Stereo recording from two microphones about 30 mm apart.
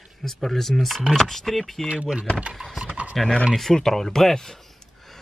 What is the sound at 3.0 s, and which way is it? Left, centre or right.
Speech, right.